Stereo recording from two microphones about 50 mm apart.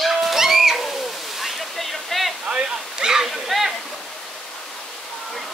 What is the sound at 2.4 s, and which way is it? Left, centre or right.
Speech, centre.